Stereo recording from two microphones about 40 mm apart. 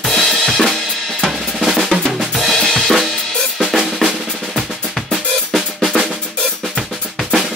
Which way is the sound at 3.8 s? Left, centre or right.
Right.